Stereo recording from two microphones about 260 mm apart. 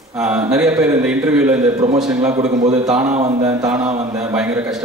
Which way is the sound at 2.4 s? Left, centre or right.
Right.